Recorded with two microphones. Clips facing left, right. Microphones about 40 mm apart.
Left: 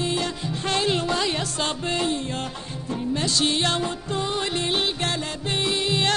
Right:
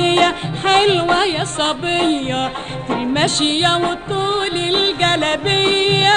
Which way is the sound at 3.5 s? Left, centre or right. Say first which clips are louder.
Right 8 dB; right.